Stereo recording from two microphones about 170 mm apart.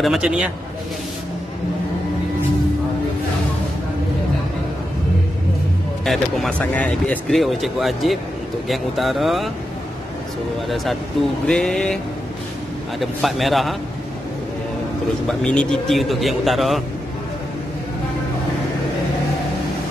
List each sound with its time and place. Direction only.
0.0 s speech: centre (ahead or behind)
6.0 s speech: centre (ahead or behind)
11.4 s speech: 5° left (ahead or behind)
13.0 s speech: centre (ahead or behind)
15.2 s speech: 5° left (ahead or behind)